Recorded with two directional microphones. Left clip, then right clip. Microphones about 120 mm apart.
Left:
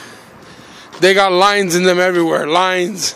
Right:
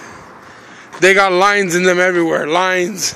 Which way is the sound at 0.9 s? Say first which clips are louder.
Even; 15° left (ahead or behind).